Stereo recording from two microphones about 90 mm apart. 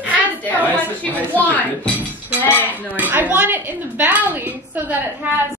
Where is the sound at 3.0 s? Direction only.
20° right (ahead or behind).